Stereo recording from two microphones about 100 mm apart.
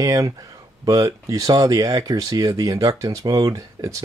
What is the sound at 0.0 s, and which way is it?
Speech, 40° right (ahead or behind).